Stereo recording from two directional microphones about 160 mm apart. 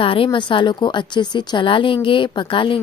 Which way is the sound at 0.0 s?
35° left (ahead or behind).